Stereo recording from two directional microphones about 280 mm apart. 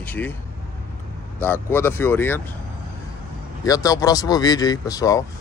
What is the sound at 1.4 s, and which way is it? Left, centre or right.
Speech, centre.